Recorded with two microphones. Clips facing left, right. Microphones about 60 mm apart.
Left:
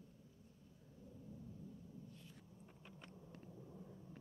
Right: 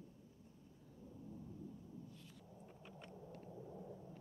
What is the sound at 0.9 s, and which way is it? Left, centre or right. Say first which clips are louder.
Thunder: right 2 dB; centre.